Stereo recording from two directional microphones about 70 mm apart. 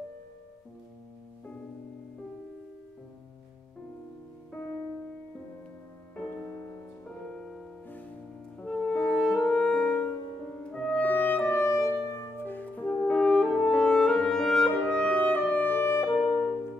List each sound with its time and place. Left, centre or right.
7.2 s music: centre
9.2 s music: centre; by 12.3 s left
12.4 s music: left
13.0 s clarinet: centre; by 16.4 s left